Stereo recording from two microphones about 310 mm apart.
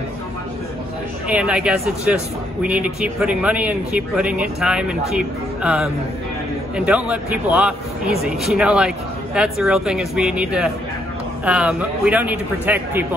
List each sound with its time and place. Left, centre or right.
1.3 s speech: centre
6.9 s speech: centre